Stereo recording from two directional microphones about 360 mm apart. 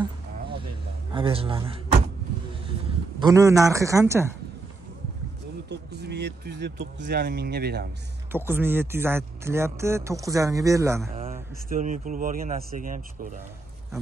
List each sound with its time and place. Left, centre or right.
1.1 s speech: centre
3.2 s a man's voice: centre
5.7 s speech: right
8.3 s a man's voice: centre; by 13.4 s right